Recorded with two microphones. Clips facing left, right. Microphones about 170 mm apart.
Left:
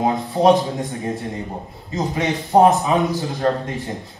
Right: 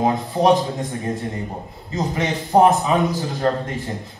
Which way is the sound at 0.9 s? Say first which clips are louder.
Even; 20° left (ahead or behind).